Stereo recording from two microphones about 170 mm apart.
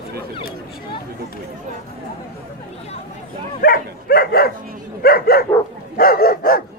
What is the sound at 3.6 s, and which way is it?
Dog, 60° left (ahead or behind).